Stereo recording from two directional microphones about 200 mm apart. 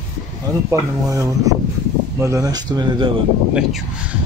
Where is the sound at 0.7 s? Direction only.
15° right (ahead or behind).